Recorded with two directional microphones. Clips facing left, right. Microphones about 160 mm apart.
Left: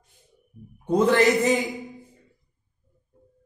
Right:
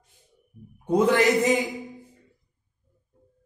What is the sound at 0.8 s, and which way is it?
Speech, 10° right (ahead or behind).